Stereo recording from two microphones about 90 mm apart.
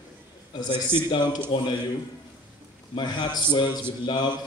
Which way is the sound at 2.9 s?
55° left (ahead or behind).